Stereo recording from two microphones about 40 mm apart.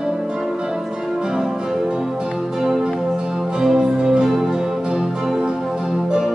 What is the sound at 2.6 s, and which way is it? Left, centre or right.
Music, centre.